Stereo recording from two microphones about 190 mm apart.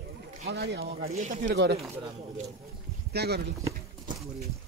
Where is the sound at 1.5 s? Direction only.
65° right (ahead or behind).